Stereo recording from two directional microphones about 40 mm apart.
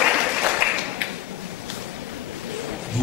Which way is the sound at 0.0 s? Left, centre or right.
Right.